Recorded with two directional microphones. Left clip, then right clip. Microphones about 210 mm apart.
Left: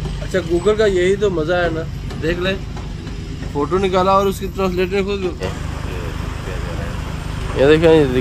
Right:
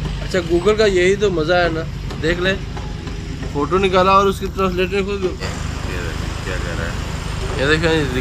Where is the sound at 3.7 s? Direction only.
30° left (ahead or behind).